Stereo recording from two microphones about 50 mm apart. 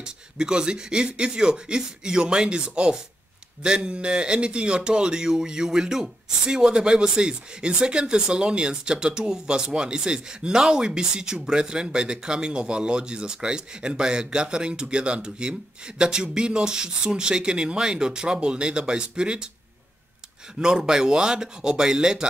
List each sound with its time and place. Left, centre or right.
0.0 s speech: centre
20.5 s speech: centre